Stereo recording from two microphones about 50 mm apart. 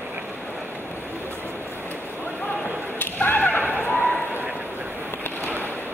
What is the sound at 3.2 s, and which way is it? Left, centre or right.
Whip, left.